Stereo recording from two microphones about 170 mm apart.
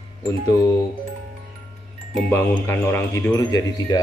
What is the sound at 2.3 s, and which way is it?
Speech, 10° left (ahead or behind).